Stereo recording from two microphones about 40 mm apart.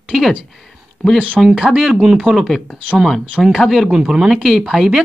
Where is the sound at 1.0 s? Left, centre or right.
Centre.